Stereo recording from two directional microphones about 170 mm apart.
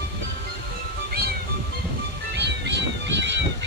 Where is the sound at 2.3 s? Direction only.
85° right.